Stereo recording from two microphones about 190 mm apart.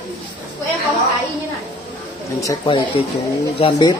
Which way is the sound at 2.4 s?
25° left (ahead or behind).